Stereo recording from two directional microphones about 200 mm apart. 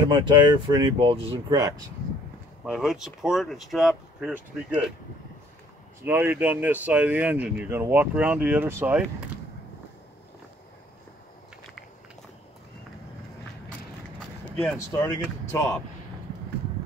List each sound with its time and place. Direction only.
0.1 s speech: 20° right (ahead or behind)
2.6 s speech: 5° right (ahead or behind)
6.0 s speech: 10° right (ahead or behind)
14.5 s speech: 5° left (ahead or behind)